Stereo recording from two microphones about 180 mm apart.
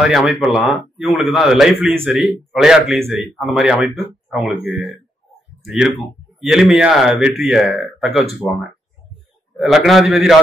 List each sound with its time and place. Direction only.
0.0 s a man's voice: centre (ahead or behind)
6.5 s a man's voice: 5° right (ahead or behind)
9.6 s a man's voice: centre (ahead or behind)